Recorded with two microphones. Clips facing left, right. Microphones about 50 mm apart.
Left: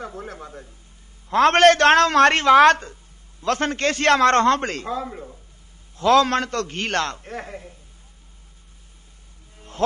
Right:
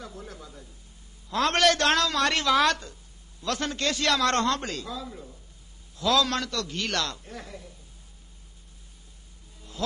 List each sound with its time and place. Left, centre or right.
0.0 s a man's voice: left
9.6 s music: left